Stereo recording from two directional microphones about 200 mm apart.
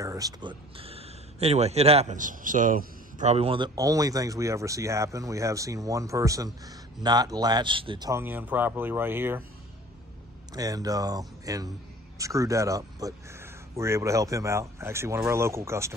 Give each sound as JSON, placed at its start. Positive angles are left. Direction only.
{"t": 0.0, "sound": "speech", "side_deg": -15}
{"t": 8.1, "sound": "speech", "side_deg": -10}
{"t": 10.5, "sound": "speech", "side_deg": -20}